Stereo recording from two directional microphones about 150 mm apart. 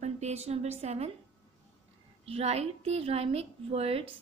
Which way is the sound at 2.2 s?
45° right (ahead or behind).